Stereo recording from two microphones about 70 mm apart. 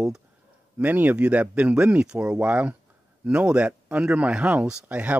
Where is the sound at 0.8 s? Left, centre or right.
Right.